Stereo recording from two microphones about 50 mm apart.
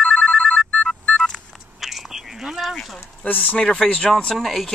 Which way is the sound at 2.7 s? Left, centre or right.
Centre.